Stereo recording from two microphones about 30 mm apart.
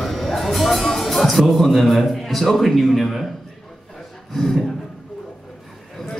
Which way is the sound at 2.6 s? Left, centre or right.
Centre.